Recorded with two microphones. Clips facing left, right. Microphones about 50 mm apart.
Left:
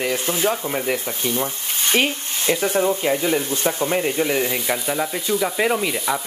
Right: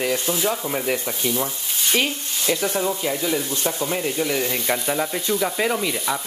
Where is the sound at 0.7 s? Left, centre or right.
Centre.